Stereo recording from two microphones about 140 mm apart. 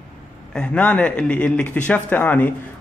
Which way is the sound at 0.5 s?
10° left (ahead or behind).